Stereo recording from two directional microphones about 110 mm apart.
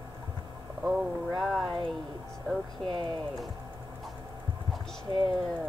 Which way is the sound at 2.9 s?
50° right (ahead or behind).